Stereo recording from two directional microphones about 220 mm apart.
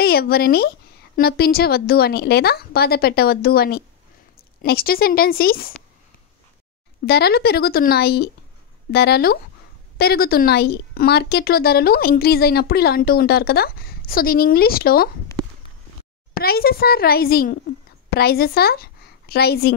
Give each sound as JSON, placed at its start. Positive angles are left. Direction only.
{"t": 0.0, "sound": "a woman's voice", "side_deg": 45}
{"t": 7.1, "sound": "a woman's voice", "side_deg": 45}
{"t": 16.3, "sound": "a woman's voice", "side_deg": 45}